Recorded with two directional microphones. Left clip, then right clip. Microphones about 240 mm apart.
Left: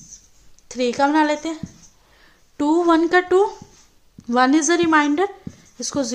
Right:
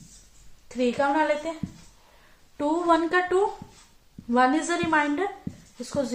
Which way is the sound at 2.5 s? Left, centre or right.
Left.